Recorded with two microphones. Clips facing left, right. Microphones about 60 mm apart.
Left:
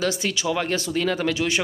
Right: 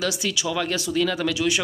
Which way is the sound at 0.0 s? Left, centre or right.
Left.